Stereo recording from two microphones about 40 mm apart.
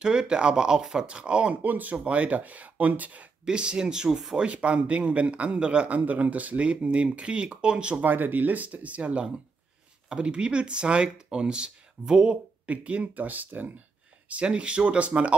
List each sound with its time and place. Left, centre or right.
0.0 s speech: centre
1.6 s speech: right
3.4 s speech: right
4.4 s speech: right
5.9 s speech: right
8.0 s speech: right
12.6 s speech: right
14.3 s speech: right